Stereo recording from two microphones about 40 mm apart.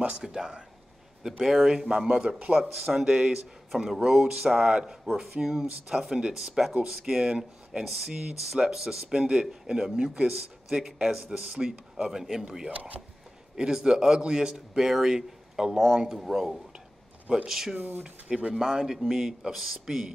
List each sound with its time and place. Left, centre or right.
0.2 s speech: centre
2.5 s speech: centre
4.6 s a man's voice: right
12.7 s speech: right
13.6 s a man's voice: centre
14.8 s speech: centre
17.7 s speech: right
18.0 s a man's voice: right; by 20.1 s centre